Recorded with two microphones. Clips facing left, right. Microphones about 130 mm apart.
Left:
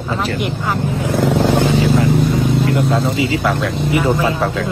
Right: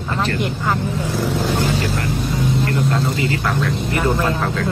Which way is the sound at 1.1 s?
80° left.